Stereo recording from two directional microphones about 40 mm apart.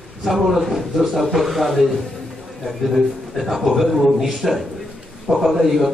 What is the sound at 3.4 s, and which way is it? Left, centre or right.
A man's voice, centre.